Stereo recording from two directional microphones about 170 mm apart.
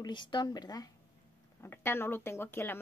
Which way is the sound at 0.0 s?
25° left (ahead or behind).